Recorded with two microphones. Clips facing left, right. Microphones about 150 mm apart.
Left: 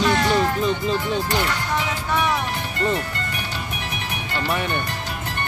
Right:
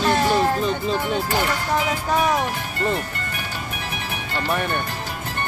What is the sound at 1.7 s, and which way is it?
Music, 40° right (ahead or behind).